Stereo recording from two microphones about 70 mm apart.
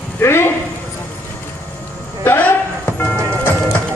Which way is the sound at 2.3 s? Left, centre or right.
Left.